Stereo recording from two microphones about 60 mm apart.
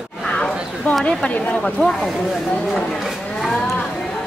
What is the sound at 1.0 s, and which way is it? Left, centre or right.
Speech, left.